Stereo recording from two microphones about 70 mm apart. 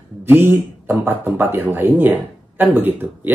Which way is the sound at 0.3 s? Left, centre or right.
Right.